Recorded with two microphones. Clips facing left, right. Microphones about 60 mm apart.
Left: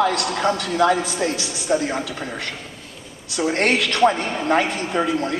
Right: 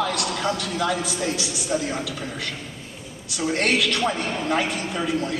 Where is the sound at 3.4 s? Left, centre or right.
Left.